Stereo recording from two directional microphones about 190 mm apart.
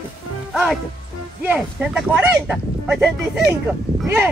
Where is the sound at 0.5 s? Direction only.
Centre (ahead or behind).